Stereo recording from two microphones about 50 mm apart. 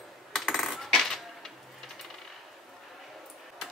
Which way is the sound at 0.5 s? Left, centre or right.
Centre.